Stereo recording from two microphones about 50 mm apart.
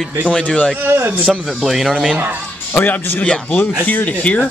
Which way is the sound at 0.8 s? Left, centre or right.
Right.